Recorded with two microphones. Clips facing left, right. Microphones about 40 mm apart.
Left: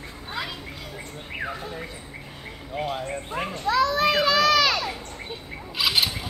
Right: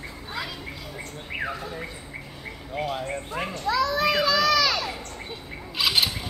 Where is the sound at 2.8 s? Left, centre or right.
Centre.